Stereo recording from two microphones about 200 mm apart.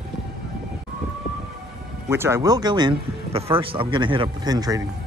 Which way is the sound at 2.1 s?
15° right (ahead or behind).